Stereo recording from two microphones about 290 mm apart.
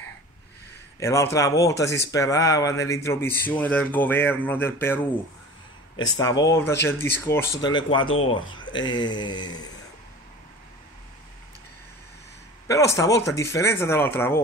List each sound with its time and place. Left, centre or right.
0.9 s speech: centre
6.1 s speech: centre
12.6 s speech: centre